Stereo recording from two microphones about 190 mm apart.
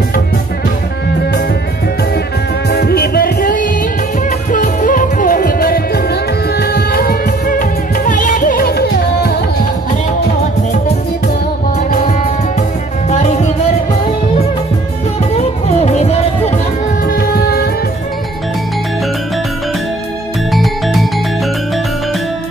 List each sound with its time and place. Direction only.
2.7 s music: 55° left (ahead or behind)
13.1 s music: 35° left (ahead or behind)
15.3 s music: 35° left (ahead or behind)
17.3 s music: 55° left (ahead or behind)
20.5 s music: centre (ahead or behind)